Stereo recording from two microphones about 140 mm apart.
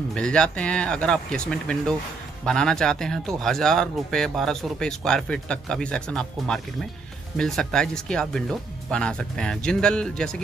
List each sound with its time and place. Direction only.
0.1 s speech: 5° left (ahead or behind)